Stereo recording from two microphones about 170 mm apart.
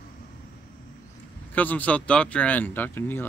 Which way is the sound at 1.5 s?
10° left (ahead or behind).